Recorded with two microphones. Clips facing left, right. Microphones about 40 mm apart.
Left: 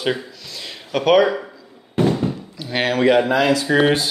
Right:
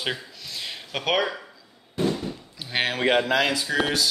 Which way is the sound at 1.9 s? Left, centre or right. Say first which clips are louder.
Left 7 dB; left.